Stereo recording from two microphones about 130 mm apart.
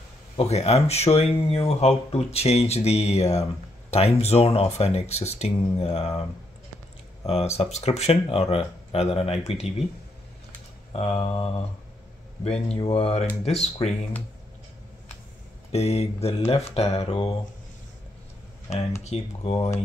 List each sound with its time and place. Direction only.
0.4 s speech: 55° left (ahead or behind)
7.2 s speech: 55° left (ahead or behind)
10.9 s speech: 50° left (ahead or behind)
15.7 s speech: 55° left (ahead or behind)
19.0 s speech: 55° left (ahead or behind)